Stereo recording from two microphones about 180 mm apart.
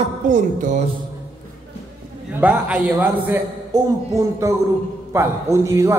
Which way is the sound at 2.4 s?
5° right (ahead or behind).